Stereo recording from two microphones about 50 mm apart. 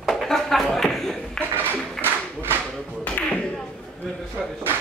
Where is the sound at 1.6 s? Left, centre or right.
Right.